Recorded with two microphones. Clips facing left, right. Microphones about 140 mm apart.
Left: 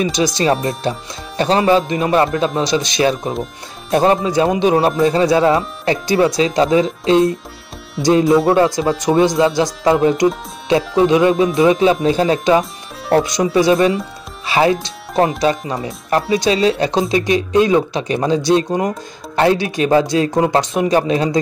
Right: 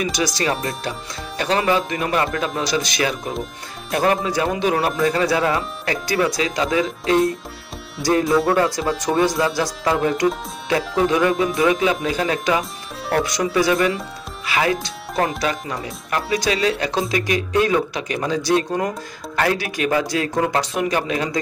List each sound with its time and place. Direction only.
0.0 s speech: 25° left (ahead or behind)